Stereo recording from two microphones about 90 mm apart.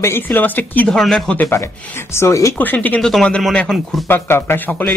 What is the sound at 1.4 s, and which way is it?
Speech, 30° left (ahead or behind).